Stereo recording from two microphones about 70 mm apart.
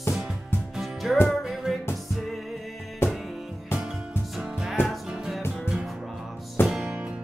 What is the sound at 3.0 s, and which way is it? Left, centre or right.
Music, left.